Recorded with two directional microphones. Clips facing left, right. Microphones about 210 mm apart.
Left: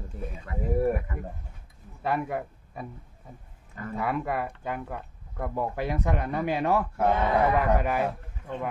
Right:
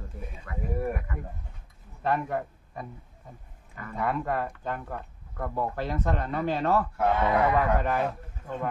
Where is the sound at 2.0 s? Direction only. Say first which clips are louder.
Right 1 dB; 10° left (ahead or behind).